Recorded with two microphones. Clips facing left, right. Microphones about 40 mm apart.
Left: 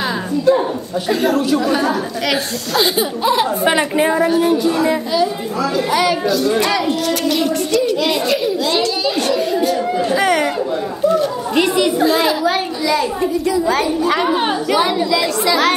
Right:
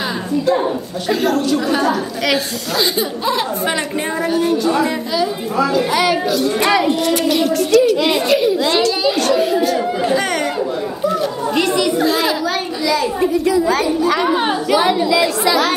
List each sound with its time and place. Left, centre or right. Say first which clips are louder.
0.5 s a child's voice: left 4 dB; centre
8.0 s a child's voice: right 2 dB; centre
11.6 s a child's voice: left 2 dB; centre